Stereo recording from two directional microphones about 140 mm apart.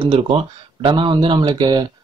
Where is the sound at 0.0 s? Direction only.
35° right (ahead or behind).